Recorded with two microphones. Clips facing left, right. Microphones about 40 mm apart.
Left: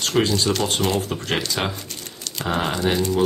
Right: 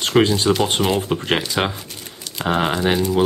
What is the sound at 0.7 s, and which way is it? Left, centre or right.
Speech, centre.